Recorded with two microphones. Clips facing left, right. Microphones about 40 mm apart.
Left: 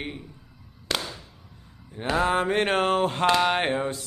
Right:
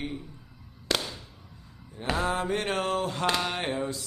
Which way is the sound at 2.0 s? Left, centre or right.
Left.